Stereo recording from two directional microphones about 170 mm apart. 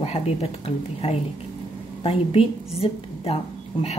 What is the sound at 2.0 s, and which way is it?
A woman's voice, 30° left (ahead or behind).